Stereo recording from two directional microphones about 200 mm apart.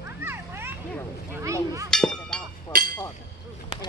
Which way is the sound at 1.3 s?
15° right (ahead or behind).